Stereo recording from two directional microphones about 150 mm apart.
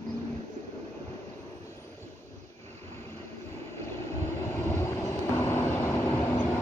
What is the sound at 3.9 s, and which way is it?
Vehicle, 20° left (ahead or behind).